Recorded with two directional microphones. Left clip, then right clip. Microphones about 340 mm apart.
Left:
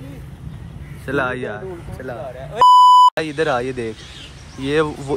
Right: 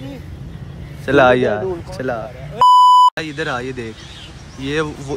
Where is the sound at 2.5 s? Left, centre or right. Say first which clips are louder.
Even; centre.